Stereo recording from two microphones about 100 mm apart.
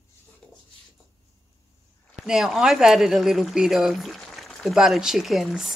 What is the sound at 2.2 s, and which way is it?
Speech, 5° right (ahead or behind).